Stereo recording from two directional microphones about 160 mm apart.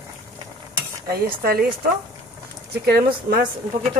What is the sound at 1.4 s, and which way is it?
Speech, 70° right (ahead or behind).